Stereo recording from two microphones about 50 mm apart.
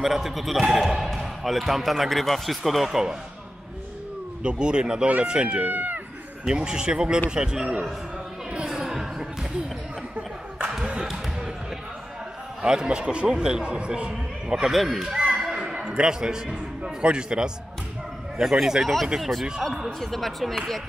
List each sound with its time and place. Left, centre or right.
0.0 s speech: centre
4.4 s a man's voice: centre
5.7 s speech: right
6.4 s speech: centre
8.6 s a sound: centre
10.6 s a sound: centre
12.6 s a man's voice: centre
14.7 s speech: centre